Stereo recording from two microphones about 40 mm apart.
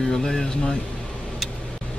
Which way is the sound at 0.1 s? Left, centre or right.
Centre.